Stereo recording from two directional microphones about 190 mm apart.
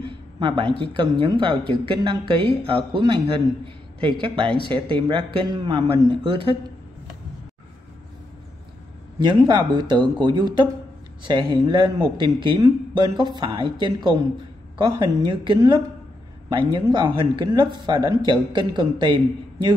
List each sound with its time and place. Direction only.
0.0 s a sound: 25° right (ahead or behind)
0.7 s speech: 25° right (ahead or behind)
9.2 s speech: 25° right (ahead or behind)